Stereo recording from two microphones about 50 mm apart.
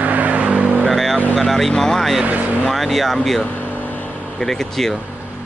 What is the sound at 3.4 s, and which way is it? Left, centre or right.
Vehicle, left.